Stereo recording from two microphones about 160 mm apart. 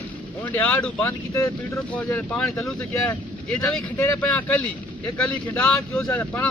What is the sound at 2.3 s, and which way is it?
Speech, centre (ahead or behind).